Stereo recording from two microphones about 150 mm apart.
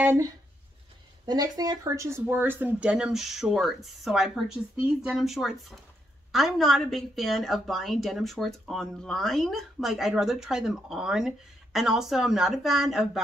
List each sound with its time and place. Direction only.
0.0 s speech: 15° right (ahead or behind)
1.2 s a woman's voice: 25° right (ahead or behind); by 13.2 s 5° right (ahead or behind)